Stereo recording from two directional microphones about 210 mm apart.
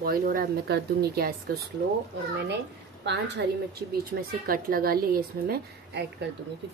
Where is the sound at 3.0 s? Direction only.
55° right (ahead or behind).